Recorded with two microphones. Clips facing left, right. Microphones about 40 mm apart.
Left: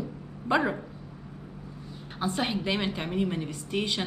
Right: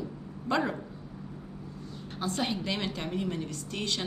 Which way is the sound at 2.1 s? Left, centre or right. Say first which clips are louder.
Left 2 dB; centre.